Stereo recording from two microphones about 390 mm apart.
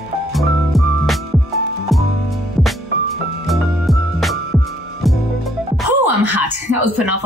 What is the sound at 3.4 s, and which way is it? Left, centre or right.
Music, centre.